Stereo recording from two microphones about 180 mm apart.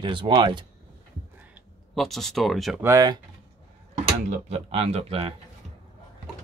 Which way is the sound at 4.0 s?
35° right (ahead or behind).